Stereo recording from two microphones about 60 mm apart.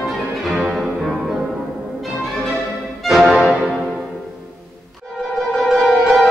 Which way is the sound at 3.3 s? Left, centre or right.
Centre.